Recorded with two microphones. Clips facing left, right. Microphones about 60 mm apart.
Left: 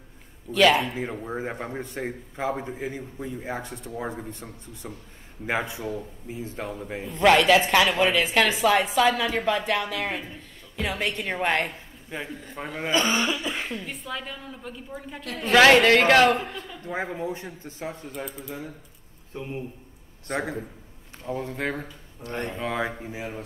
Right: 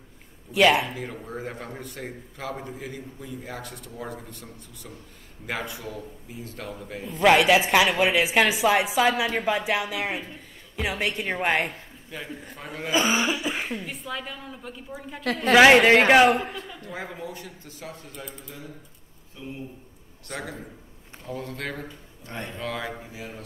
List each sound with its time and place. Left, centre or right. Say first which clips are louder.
0.5 s a woman's voice: even; centre
0.9 s a man's voice: left 4 dB; left
7.1 s a woman's voice: even; centre
12.1 s a man's voice: left 3 dB; left
12.9 s a woman's voice: right 1 dB; centre
16.8 s a man's voice: left 8 dB; left
18.1 s speech: left 5 dB; centre
19.3 s speech: left 5 dB; left
20.2 s a man's voice: left 6 dB; left
22.2 s speech: left 5 dB; left
22.6 s a man's voice: left 2 dB; left